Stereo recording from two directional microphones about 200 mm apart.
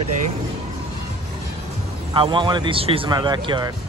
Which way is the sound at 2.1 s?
25° right (ahead or behind).